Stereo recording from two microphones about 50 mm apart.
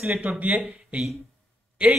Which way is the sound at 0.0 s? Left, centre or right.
Right.